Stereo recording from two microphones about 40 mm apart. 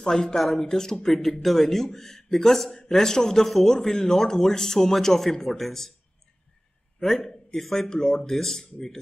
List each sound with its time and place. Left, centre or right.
0.0 s a man's voice: centre
0.4 s speech: centre
0.7 s a man's voice: centre
0.9 s a man's voice: centre
7.5 s speech: centre
7.9 s speech: centre
8.3 s a man's voice: centre